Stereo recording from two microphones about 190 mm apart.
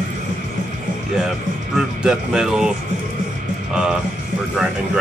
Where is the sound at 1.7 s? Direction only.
5° right (ahead or behind).